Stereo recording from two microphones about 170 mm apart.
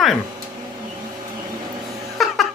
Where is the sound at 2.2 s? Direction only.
Centre (ahead or behind).